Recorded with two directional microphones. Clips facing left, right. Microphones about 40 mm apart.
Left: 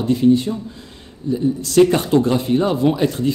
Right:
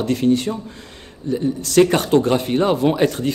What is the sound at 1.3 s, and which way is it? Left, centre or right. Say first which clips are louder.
Speech: left 1 dB; right.